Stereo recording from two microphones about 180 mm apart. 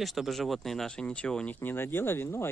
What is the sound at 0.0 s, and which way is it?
Speech, centre (ahead or behind).